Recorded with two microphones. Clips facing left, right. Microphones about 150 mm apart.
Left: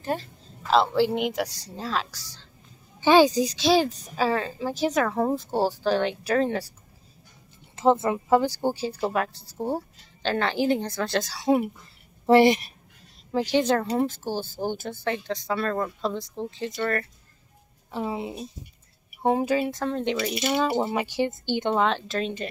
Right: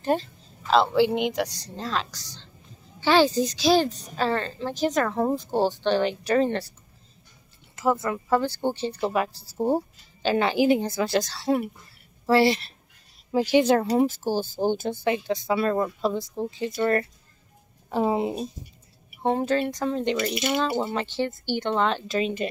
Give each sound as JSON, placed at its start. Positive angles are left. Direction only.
{"t": 0.0, "sound": "speech", "side_deg": -25}
{"t": 0.7, "sound": "a woman's voice", "side_deg": 0}
{"t": 7.7, "sound": "speech", "side_deg": 25}
{"t": 11.2, "sound": "speech", "side_deg": 15}
{"t": 13.3, "sound": "speech", "side_deg": -10}
{"t": 16.8, "sound": "speech", "side_deg": -20}
{"t": 17.9, "sound": "speech", "side_deg": -50}
{"t": 19.2, "sound": "a woman's voice", "side_deg": 10}
{"t": 21.7, "sound": "a woman's voice", "side_deg": 0}